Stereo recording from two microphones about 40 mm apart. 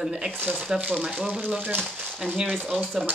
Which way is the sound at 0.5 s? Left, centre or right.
Right.